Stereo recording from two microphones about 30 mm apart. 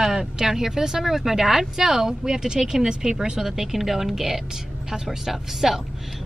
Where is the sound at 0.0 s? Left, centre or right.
Centre.